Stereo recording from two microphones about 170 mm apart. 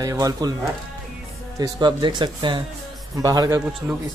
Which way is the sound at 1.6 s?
25° right (ahead or behind).